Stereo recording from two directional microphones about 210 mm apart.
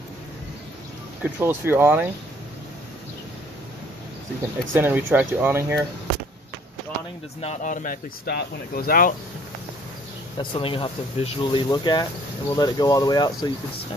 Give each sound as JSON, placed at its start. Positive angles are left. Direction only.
{"t": 1.2, "sound": "speech", "side_deg": -10}
{"t": 4.7, "sound": "speech", "side_deg": -10}
{"t": 7.4, "sound": "speech", "side_deg": 40}
{"t": 10.3, "sound": "speech", "side_deg": 25}